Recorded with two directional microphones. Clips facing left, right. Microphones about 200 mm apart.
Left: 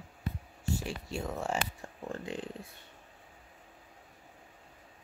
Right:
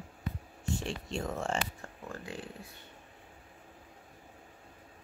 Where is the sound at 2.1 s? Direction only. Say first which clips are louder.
Left 4 dB; 20° left (ahead or behind).